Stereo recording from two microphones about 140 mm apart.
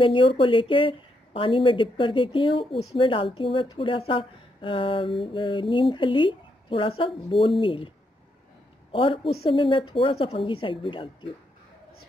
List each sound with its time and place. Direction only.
0.0 s a woman's voice: 35° left (ahead or behind)
8.9 s a woman's voice: 40° left (ahead or behind)